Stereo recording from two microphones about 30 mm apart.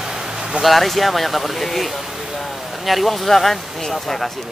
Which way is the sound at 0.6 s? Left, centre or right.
Centre.